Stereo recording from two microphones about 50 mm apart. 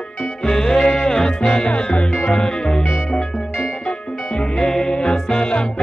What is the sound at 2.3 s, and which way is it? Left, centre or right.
Music, centre.